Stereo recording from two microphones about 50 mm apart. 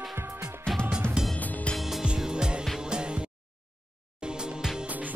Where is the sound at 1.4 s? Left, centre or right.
Left.